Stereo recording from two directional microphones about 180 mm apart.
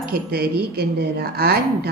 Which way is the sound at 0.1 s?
60° right (ahead or behind).